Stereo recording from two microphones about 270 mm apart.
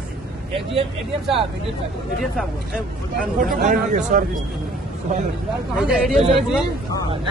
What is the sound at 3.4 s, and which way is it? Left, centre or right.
Speech, right.